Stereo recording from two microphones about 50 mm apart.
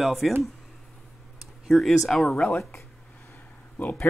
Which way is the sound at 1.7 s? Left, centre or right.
Centre.